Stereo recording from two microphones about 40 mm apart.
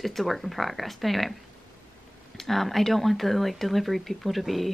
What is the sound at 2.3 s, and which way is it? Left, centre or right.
Speech, centre.